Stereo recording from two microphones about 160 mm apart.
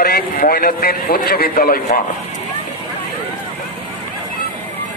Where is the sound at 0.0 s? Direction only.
65° left (ahead or behind).